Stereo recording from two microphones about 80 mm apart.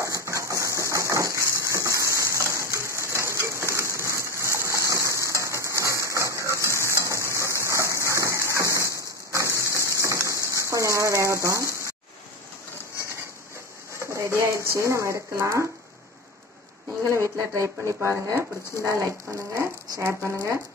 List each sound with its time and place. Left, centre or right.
0.0 s coin: right
5.8 s a sound: right
13.9 s a sound: right
14.7 s speech: right
17.1 s speech: right
18.8 s speech: right